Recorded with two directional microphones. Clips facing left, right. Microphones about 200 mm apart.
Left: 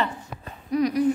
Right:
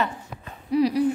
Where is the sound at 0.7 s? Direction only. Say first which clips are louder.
Right 2 dB; 30° right (ahead or behind).